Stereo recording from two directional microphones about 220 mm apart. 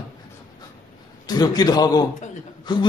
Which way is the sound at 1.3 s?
20° left (ahead or behind).